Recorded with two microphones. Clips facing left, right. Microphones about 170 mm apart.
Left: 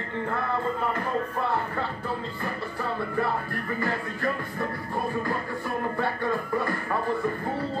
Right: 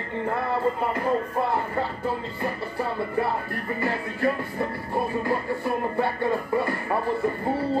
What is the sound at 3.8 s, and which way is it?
Music, 30° right (ahead or behind).